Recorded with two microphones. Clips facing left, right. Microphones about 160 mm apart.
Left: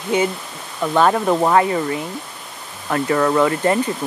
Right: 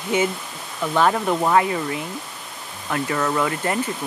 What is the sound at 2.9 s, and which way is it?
Speech, 45° left (ahead or behind).